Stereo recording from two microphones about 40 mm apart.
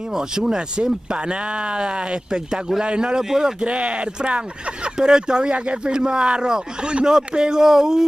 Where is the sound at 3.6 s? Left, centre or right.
Right.